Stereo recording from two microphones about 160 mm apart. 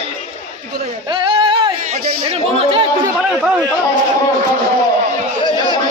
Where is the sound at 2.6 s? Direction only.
35° right (ahead or behind).